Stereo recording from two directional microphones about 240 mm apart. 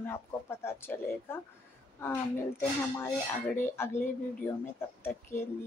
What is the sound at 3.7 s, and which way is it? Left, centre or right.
A woman's voice, centre.